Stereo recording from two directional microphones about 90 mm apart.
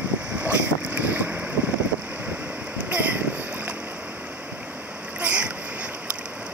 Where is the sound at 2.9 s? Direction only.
15° right (ahead or behind).